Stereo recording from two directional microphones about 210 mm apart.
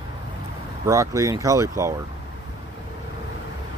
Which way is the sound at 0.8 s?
15° right (ahead or behind).